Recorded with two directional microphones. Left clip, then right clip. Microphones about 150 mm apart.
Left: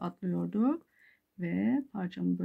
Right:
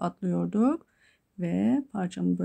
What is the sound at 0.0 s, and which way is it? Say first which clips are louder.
Speech: right 6 dB; 50° right (ahead or behind).